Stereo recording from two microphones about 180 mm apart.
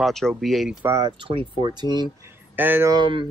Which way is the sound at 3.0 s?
30° right (ahead or behind).